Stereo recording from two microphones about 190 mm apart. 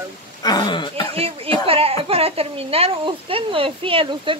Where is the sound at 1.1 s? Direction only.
30° right (ahead or behind).